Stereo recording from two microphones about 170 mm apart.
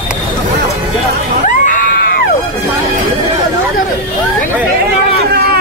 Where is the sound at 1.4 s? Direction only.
50° left (ahead or behind).